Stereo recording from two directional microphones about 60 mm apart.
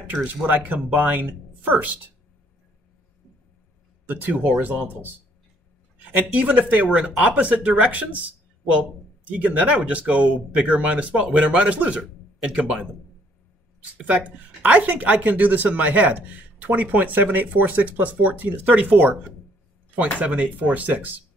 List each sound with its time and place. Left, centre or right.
0.1 s speech: right
4.1 s speech: right
14.6 s speech: right
20.2 s speech: right